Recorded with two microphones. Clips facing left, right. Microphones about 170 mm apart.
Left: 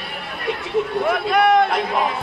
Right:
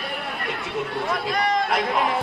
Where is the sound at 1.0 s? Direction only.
65° left (ahead or behind).